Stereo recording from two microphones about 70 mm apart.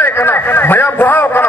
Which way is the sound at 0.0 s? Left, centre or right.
Left.